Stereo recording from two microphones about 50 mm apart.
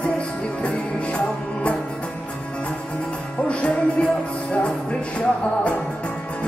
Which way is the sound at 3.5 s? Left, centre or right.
Left.